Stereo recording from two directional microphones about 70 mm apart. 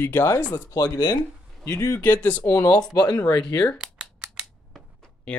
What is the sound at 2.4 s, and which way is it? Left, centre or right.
Speech, left.